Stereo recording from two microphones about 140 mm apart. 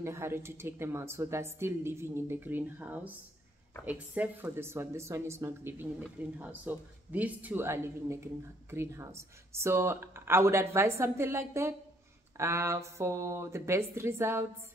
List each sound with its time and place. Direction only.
0.0 s speech: 20° right (ahead or behind)